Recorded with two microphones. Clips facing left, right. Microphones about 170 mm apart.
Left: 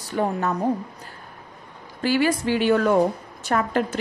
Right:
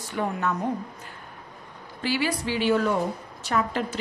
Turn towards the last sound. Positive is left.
turn(degrees=50)  # may be behind; listen again after turning